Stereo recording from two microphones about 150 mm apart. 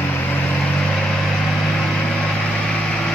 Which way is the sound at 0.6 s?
5° left (ahead or behind).